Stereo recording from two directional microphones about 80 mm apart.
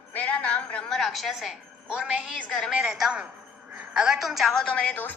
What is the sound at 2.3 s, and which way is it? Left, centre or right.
Speech, centre.